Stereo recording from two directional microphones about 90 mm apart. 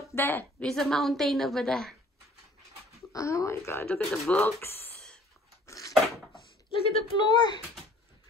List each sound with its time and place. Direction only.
0.1 s a woman's voice: 25° left (ahead or behind)
0.6 s a woman's voice: 5° left (ahead or behind)
3.1 s speech: 35° left (ahead or behind)
3.8 s speech: 15° left (ahead or behind)
4.6 s speech: 25° left (ahead or behind)
5.7 s a sound: 40° left (ahead or behind)
6.7 s speech: 90° left
7.2 s a child's voice: 50° left (ahead or behind)